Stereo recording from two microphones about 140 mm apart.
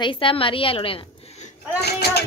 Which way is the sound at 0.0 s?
40° left (ahead or behind).